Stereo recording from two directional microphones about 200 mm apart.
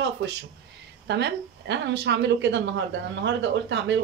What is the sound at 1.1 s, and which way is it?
Speech, 60° right (ahead or behind).